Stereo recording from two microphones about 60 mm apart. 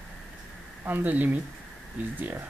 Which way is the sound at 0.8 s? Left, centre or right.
Right.